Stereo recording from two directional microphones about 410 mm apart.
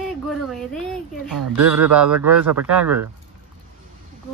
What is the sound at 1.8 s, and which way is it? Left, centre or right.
Speech, centre.